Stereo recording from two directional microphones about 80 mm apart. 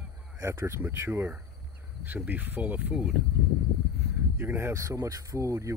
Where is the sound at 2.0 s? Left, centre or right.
Right.